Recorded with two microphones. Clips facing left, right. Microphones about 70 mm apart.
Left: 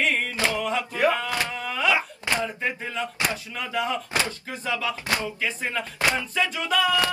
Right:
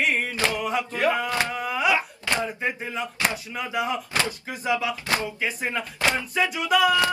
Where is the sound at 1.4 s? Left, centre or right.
Centre.